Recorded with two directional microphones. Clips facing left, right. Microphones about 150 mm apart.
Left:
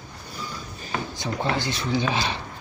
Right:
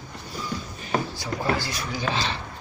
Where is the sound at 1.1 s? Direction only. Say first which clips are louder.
Even; 25° left (ahead or behind).